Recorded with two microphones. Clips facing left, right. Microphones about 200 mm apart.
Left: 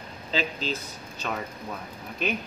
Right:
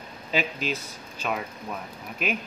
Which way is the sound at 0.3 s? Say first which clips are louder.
Right 1 dB; 10° right (ahead or behind).